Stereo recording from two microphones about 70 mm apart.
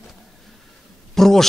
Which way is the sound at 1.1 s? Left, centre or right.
Centre.